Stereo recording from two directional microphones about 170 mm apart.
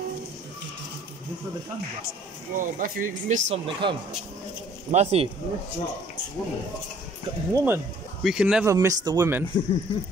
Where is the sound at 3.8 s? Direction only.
30° right (ahead or behind).